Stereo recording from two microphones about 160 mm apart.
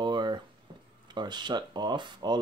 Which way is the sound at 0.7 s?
30° right (ahead or behind).